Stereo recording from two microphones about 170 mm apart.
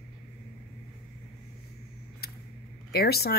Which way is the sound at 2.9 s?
65° left (ahead or behind).